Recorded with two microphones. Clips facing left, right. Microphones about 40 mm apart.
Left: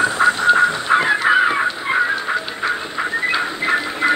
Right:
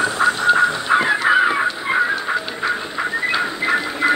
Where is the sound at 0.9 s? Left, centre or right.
Left.